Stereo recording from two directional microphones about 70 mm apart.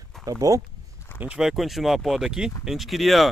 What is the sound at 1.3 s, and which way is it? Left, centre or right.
Speech, centre.